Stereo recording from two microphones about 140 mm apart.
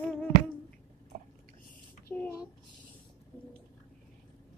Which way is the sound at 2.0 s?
15° left (ahead or behind).